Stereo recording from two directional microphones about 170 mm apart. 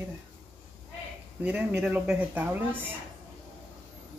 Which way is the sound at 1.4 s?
10° right (ahead or behind).